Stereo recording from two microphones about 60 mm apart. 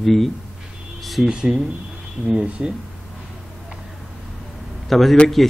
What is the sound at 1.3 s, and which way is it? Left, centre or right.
Speech, centre.